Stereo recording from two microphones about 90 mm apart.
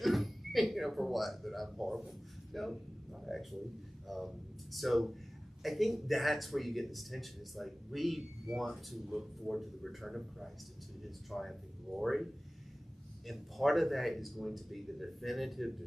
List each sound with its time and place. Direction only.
0.0 s speech: centre (ahead or behind)
13.3 s speech: centre (ahead or behind)